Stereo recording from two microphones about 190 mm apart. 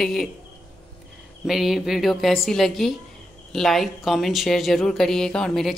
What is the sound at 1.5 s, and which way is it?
Speech, centre (ahead or behind).